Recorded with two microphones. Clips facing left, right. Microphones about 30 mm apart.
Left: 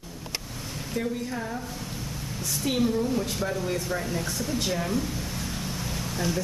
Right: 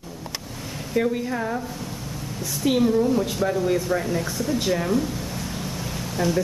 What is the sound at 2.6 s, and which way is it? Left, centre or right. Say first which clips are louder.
Speech: right 6 dB; centre.